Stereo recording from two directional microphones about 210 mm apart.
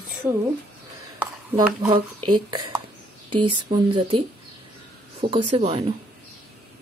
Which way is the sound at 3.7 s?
25° right (ahead or behind).